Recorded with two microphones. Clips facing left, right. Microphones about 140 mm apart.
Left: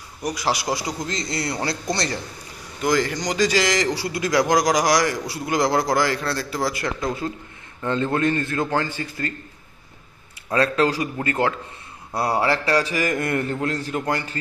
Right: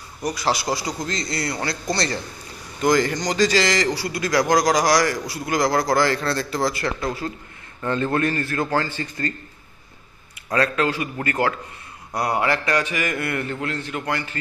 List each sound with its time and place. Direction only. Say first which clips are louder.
0.2 s a man's voice: right 1 dB; 15° left (ahead or behind)
2.8 s a man's voice: right 2 dB; centre (ahead or behind)
10.5 s a man's voice: left 2 dB; 30° left (ahead or behind)
11.2 s a man's voice: right 1 dB; 25° left (ahead or behind)